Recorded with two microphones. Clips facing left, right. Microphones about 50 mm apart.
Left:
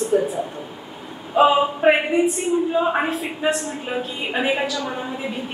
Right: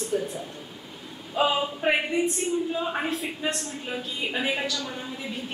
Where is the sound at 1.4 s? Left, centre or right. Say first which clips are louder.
Left 9 dB; left.